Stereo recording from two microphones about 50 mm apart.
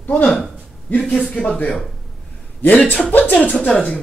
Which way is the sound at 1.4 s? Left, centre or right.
Centre.